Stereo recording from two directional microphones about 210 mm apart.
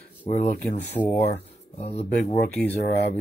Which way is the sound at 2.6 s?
50° left (ahead or behind).